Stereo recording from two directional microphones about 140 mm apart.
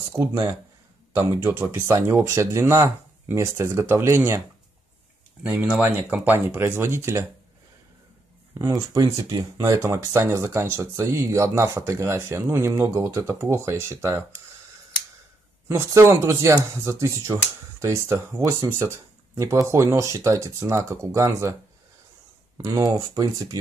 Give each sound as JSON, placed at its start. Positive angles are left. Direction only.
{"t": 0.1, "sound": "speech", "side_deg": -25}
{"t": 5.4, "sound": "speech", "side_deg": -10}
{"t": 8.5, "sound": "speech", "side_deg": -25}
{"t": 15.7, "sound": "speech", "side_deg": -20}
{"t": 22.6, "sound": "speech", "side_deg": -25}